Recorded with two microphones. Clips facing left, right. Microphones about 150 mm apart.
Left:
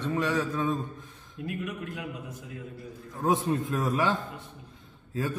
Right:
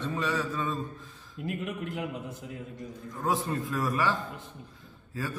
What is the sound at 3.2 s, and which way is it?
Speech, 20° left (ahead or behind).